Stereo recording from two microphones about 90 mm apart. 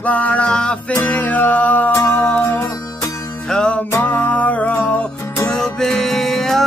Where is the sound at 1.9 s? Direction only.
30° left (ahead or behind).